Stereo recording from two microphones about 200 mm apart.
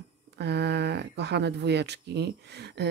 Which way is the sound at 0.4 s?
55° right (ahead or behind).